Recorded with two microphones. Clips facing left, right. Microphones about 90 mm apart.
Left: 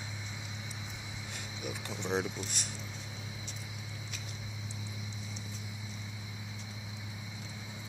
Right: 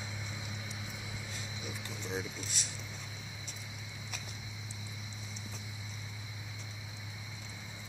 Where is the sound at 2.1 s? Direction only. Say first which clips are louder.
Left 6 dB; 60° left (ahead or behind).